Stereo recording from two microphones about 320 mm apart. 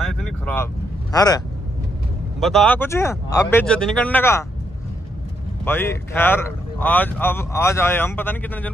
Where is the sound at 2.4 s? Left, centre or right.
Centre.